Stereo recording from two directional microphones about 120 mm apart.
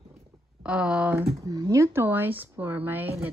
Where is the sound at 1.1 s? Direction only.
30° right (ahead or behind).